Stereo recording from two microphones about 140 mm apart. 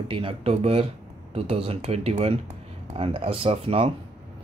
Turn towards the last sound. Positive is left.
turn(degrees=-45)  # may be behind; listen again after turning